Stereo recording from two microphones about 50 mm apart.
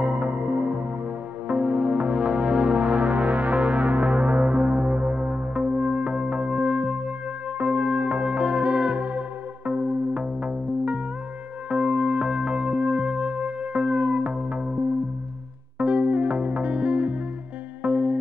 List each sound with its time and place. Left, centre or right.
0.0 s music: right
15.8 s music: right